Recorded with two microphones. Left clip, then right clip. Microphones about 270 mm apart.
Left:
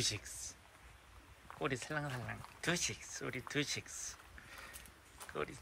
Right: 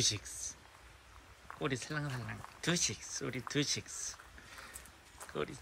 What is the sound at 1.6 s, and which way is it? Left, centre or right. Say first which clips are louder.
Speech: right 1 dB; centre.